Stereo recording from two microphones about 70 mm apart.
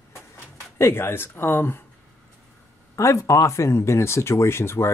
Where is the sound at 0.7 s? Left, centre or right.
Left.